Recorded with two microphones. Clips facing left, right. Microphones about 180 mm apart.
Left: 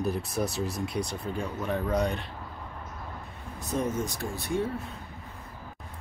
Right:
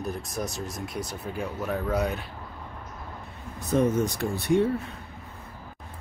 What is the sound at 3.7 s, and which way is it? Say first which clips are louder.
Speech: right 6 dB; 70° right (ahead or behind).